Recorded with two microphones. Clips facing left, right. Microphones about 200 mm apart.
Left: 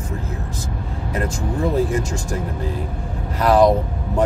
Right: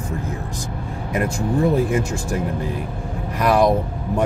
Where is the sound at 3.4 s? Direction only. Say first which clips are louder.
Left 2 dB; 10° right (ahead or behind).